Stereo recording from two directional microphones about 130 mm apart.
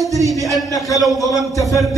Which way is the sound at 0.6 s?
25° left (ahead or behind).